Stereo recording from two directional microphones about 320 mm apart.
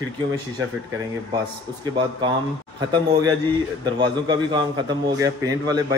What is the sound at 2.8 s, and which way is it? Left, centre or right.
A man's voice, centre.